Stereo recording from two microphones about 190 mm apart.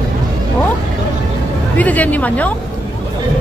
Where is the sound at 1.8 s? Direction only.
10° left (ahead or behind).